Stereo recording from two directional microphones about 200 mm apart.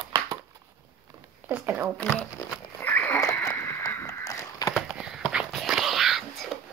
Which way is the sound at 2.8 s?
10° left (ahead or behind).